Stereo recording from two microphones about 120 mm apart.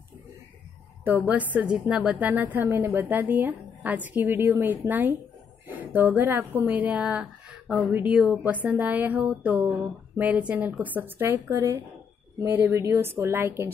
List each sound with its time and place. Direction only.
1.0 s a woman's voice: 15° right (ahead or behind)